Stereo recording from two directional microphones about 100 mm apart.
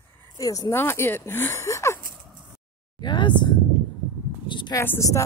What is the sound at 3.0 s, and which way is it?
Speech, 50° left (ahead or behind).